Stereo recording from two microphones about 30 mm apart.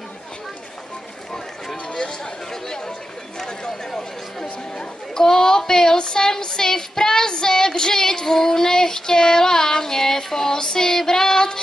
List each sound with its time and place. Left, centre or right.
2.0 s chatter: left